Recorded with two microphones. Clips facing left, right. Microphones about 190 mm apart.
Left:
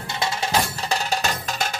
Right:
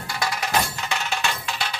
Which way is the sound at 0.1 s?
25° left (ahead or behind).